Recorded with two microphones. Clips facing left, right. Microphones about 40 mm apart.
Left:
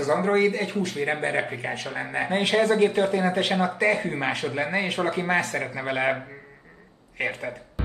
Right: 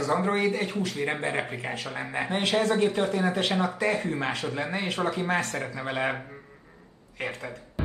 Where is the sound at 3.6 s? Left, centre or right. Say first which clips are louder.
Left 3 dB; left.